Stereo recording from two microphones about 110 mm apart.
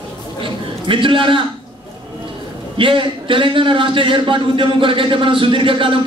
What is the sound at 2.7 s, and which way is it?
A man's voice, 50° right (ahead or behind).